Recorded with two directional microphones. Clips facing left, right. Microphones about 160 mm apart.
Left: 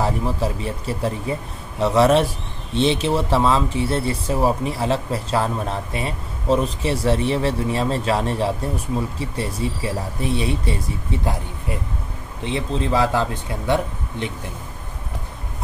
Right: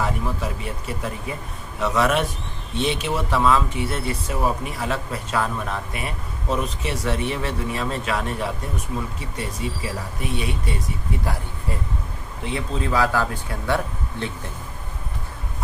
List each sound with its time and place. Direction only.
0.0 s speech: 30° left (ahead or behind)
12.4 s speech: 25° left (ahead or behind)